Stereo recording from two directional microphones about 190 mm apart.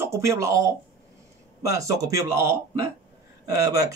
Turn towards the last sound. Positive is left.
turn(degrees=-15)  # may be behind; listen again after turning